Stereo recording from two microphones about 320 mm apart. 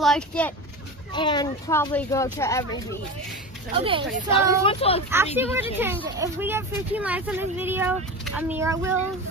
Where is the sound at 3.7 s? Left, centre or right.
Centre.